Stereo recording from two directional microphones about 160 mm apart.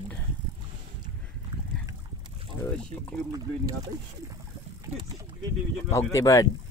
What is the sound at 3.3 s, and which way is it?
Speech, 25° right (ahead or behind).